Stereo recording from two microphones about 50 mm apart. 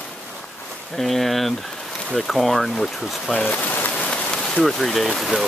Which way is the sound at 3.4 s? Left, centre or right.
Left.